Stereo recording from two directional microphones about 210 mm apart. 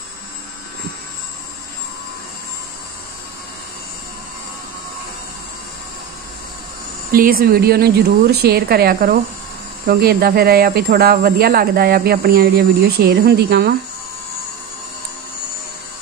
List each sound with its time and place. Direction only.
7.1 s speech: 45° right (ahead or behind)